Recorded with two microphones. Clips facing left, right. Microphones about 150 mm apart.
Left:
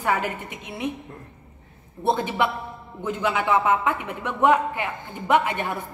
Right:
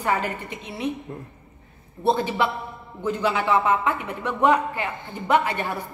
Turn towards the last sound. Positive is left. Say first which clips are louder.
# even
turn(degrees=15)  # may be behind; listen again after turning